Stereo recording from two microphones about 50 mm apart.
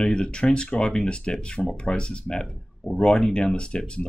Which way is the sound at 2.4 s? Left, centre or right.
Centre.